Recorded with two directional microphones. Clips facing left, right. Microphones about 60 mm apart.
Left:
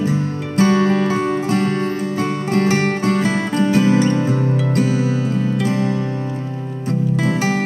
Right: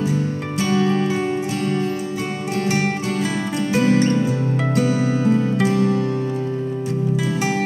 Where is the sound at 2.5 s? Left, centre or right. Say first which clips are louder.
Left 4 dB; left.